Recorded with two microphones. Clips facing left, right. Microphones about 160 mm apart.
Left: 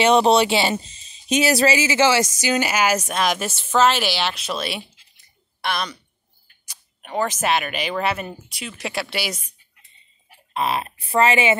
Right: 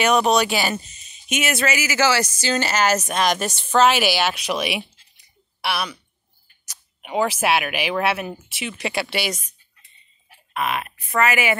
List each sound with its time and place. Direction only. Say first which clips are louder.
0.0 s speech: left 3 dB; 30° left (ahead or behind); by 5.9 s 10° right (ahead or behind)
7.0 s speech: right 2 dB; 10° right (ahead or behind); by 9.5 s 5° left (ahead or behind)
10.5 s speech: left 2 dB; 30° left (ahead or behind)